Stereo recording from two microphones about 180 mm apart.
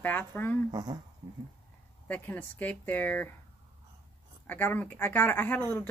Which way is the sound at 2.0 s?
10° left (ahead or behind).